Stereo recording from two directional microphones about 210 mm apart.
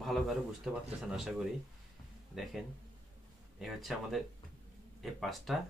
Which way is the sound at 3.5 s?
Centre (ahead or behind).